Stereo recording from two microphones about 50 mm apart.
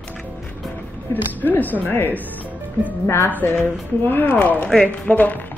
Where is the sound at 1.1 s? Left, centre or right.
Left.